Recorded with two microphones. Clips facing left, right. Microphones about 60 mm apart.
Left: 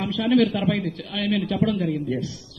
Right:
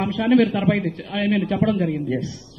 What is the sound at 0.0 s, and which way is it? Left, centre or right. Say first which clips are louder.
A man's voice: right 2 dB; right.